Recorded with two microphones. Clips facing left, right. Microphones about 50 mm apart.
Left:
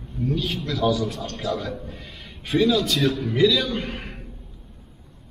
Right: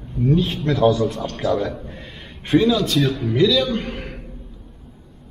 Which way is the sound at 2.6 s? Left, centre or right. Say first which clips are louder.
Right 1 dB; centre.